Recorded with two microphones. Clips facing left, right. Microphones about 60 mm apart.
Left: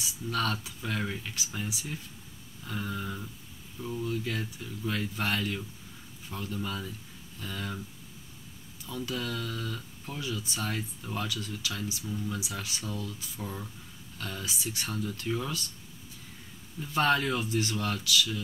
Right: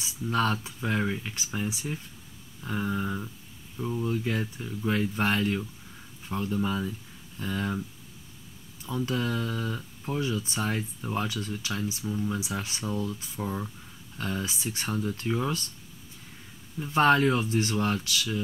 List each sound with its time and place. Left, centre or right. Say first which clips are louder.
0.0 s speech: right 4 dB; right
1.0 s speech: right 5 dB; centre
1.3 s speech: right 4 dB; right
8.8 s speech: right 5 dB; right
13.0 s speech: right 6 dB; right
16.8 s speech: right 5 dB; right